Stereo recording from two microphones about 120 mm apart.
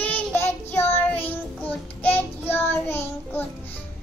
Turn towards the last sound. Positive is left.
turn(degrees=20)  # may be behind; listen again after turning